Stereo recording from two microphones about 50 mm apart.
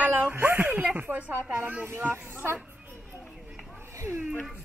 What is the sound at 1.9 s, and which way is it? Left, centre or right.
Speech, right.